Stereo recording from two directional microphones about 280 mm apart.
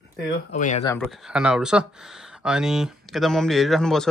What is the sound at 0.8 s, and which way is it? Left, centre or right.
Speech, centre.